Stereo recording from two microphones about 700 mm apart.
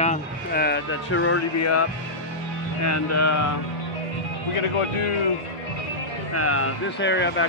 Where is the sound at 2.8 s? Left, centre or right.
Left.